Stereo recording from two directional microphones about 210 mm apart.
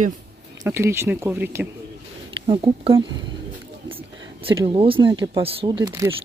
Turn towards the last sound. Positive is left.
turn(degrees=-20)  # may be behind; listen again after turning